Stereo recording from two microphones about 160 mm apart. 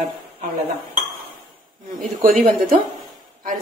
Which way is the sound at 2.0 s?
55° right (ahead or behind).